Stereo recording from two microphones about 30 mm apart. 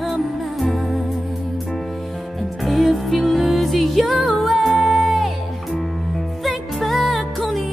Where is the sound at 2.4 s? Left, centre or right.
Centre.